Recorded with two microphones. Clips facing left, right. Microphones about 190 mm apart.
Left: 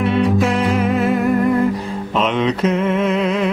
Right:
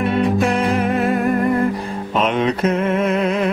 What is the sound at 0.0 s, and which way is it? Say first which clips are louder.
Music: left 1 dB; 50° right (ahead or behind).